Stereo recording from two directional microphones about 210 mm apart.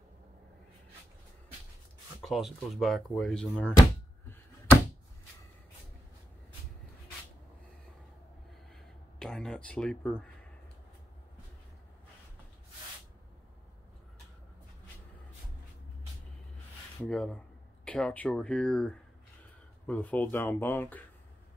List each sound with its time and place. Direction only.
2.2 s speech: centre (ahead or behind)
8.7 s a sound: centre (ahead or behind)
17.0 s speech: 5° left (ahead or behind)